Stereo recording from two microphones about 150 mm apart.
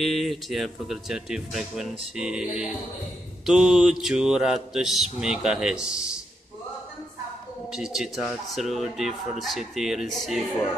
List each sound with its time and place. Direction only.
0.0 s speech: centre (ahead or behind)
7.7 s speech: 5° right (ahead or behind)